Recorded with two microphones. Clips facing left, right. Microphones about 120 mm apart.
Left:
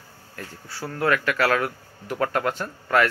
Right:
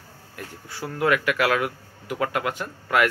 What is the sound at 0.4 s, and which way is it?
Speech, 15° right (ahead or behind).